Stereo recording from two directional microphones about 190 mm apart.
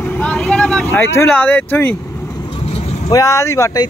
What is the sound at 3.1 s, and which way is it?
Speech, 15° left (ahead or behind).